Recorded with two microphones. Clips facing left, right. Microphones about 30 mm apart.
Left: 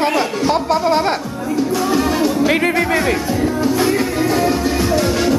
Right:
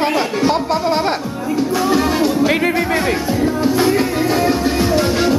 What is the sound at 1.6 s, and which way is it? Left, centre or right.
Music, centre.